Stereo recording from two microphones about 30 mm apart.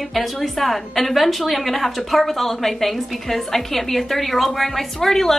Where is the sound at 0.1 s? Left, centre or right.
Centre.